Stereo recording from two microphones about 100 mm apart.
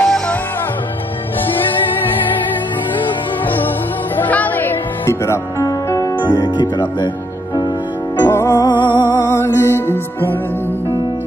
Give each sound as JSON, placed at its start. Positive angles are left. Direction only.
{"t": 0.0, "sound": "music", "side_deg": 5}
{"t": 4.2, "sound": "music", "side_deg": 15}
{"t": 6.3, "sound": "speech", "side_deg": 45}
{"t": 8.2, "sound": "music", "side_deg": 25}
{"t": 8.6, "sound": "music", "side_deg": 50}
{"t": 9.3, "sound": "music", "side_deg": 25}